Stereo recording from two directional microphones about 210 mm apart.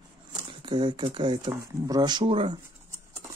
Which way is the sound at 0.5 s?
25° right (ahead or behind).